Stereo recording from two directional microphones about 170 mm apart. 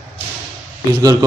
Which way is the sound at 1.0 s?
20° right (ahead or behind).